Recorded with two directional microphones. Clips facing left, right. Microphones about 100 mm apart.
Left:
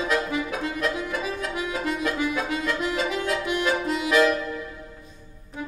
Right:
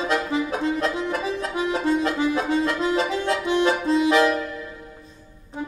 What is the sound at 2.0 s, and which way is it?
Music, 30° right (ahead or behind).